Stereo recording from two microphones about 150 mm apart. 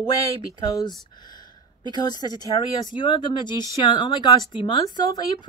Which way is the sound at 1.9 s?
25° left (ahead or behind).